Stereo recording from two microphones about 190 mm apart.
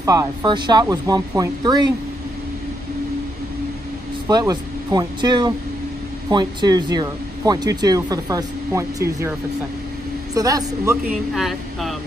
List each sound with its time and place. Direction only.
0.0 s speech: 20° right (ahead or behind)
4.3 s speech: 20° right (ahead or behind)
10.3 s speech: 20° right (ahead or behind)
11.1 s speech: centre (ahead or behind)